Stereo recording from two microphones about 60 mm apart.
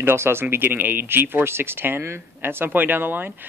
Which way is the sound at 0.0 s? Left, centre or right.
Right.